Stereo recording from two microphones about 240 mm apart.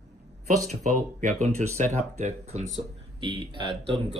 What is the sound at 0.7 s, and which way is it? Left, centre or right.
Speech, right.